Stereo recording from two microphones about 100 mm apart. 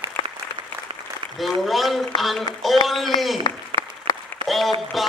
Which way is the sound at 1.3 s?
Centre (ahead or behind).